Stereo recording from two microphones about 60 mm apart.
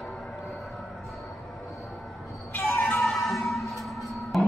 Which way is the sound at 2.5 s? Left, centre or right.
Left.